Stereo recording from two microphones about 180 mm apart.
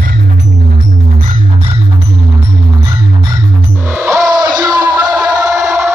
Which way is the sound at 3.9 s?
15° right (ahead or behind).